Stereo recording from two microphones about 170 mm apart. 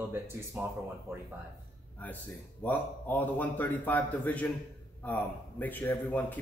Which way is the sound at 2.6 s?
10° left (ahead or behind).